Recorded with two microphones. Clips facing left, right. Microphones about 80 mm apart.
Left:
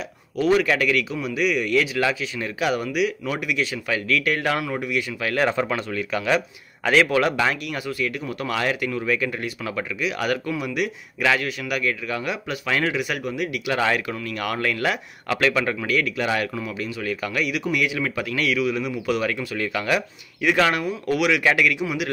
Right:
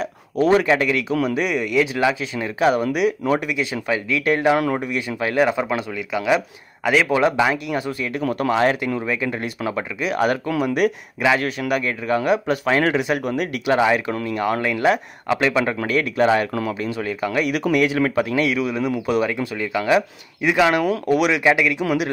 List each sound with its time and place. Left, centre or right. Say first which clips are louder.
0.4 s speech: right 3 dB; right
1.2 s speech: right 2 dB; right
1.6 s speech: right 2 dB; centre; by 3.5 s right
3.9 s speech: right 3 dB; right
5.4 s speech: right 3 dB; centre
7.1 s speech: right 3 dB; right
10.5 s speech: right 6 dB; right
13.7 s speech: right 4 dB; right
15.9 s speech: right 7 dB; right
17.5 s speech: right 5 dB; right; by 20.8 s centre
21.1 s speech: right 2 dB; right
21.5 s speech: right 2 dB; right